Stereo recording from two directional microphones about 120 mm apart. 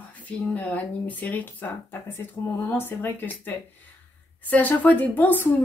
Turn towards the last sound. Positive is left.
turn(degrees=15)  # may be behind; listen again after turning